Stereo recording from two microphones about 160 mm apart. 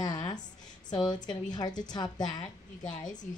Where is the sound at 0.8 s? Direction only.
25° left (ahead or behind).